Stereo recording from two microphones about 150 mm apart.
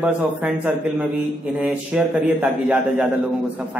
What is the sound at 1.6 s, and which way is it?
A man's voice, 10° right (ahead or behind).